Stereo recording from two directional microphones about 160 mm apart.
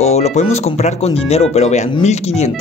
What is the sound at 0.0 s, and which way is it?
Speech, 45° left (ahead or behind).